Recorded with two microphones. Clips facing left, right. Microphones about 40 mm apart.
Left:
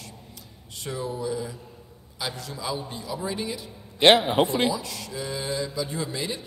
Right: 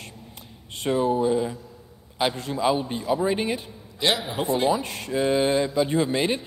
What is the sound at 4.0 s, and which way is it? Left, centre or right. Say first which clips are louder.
Speech: left 7 dB; left.